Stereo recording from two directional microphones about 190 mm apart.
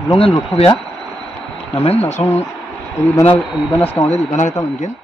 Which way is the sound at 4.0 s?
25° left (ahead or behind).